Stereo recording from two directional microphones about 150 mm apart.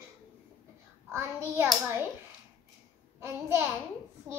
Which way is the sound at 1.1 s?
15° right (ahead or behind).